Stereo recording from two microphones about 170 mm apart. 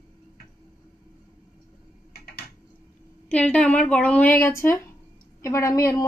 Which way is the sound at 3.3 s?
5° left (ahead or behind).